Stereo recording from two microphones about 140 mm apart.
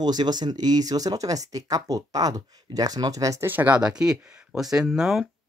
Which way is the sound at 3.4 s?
10° right (ahead or behind).